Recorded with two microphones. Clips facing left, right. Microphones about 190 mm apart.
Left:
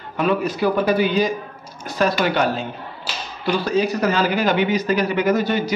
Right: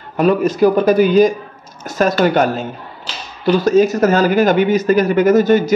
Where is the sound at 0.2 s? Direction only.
45° right (ahead or behind).